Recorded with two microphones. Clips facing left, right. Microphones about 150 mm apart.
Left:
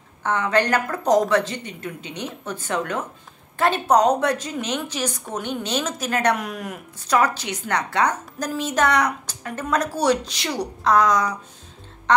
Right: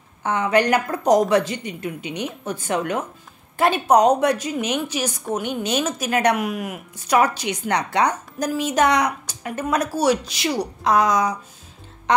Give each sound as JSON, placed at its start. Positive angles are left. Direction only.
{"t": 0.2, "sound": "a woman's voice", "side_deg": -10}